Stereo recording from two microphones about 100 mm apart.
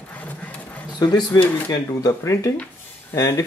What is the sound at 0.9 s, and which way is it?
Speech, 45° left (ahead or behind).